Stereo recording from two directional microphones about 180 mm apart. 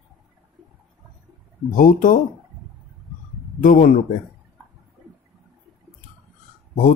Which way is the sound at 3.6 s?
45° left (ahead or behind).